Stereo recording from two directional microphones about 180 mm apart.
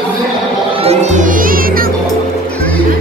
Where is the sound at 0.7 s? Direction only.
40° right (ahead or behind).